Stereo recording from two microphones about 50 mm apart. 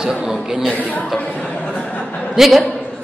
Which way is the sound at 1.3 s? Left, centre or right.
Left.